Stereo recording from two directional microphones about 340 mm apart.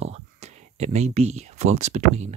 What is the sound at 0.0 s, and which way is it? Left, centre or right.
Speech, centre.